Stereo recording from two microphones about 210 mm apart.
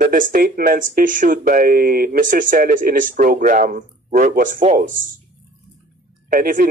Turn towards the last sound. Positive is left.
turn(degrees=-40)  # may be behind; listen again after turning